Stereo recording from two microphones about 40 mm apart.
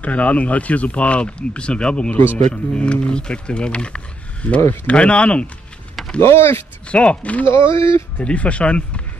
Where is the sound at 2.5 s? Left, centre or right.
Left.